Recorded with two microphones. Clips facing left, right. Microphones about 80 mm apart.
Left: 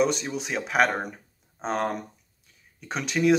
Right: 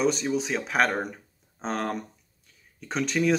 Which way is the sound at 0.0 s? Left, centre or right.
Centre.